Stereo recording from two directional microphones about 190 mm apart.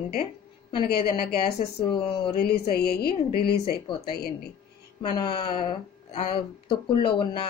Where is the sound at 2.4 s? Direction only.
55° left (ahead or behind).